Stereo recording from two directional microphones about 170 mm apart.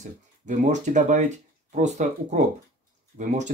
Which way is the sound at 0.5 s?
45° right (ahead or behind).